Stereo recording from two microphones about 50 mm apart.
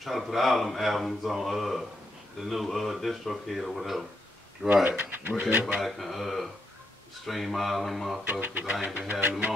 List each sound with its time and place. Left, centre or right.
0.0 s speech: centre
4.8 s speech: right
5.8 s speech: centre
8.3 s speech: right
8.8 s speech: right